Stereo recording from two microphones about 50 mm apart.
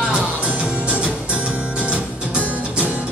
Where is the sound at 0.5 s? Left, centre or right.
Right.